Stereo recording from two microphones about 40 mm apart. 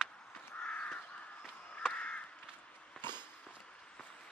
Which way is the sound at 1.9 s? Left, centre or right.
Left.